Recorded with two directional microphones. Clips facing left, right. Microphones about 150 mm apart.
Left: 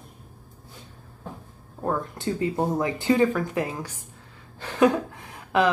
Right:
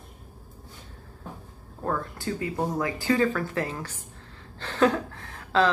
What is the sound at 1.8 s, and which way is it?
A woman's voice, 20° left (ahead or behind).